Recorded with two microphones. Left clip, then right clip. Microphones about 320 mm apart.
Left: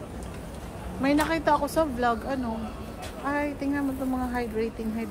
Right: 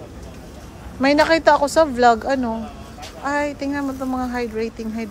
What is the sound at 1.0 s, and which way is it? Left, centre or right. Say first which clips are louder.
Speech: right 10 dB; centre.